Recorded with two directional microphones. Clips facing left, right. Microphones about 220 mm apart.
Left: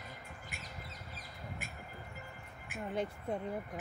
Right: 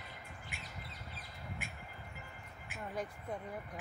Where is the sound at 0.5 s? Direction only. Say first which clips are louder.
Even; 40° left (ahead or behind).